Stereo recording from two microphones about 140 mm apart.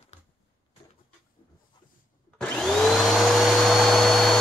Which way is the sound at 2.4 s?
5° left (ahead or behind).